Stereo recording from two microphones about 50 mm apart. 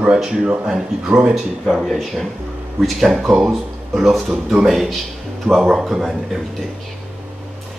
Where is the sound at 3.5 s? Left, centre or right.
Centre.